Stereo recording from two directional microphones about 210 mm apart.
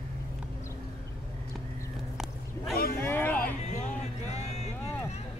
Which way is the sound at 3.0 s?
10° left (ahead or behind).